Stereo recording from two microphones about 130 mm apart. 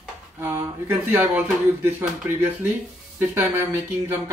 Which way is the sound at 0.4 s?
15° right (ahead or behind).